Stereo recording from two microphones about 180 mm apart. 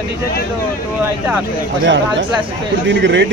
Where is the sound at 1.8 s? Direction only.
90° right.